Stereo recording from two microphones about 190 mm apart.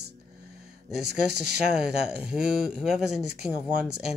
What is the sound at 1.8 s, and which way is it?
Speech, 5° right (ahead or behind).